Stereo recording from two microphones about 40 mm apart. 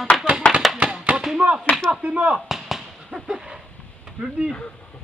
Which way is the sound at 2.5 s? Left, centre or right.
Centre.